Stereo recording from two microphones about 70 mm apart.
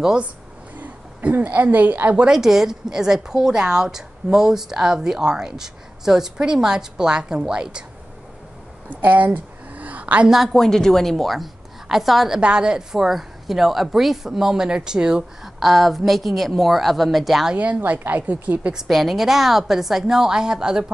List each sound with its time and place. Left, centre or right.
0.0 s speech: centre
0.7 s a woman's voice: right
2.2 s speech: centre
8.9 s a sound: right
10.2 s a woman's voice: centre
10.5 s a woman's voice: centre
12.4 s a woman's voice: centre
17.6 s a woman's voice: right
18.7 s a woman's voice: centre